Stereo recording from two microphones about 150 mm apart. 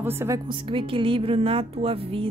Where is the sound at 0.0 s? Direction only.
15° right (ahead or behind).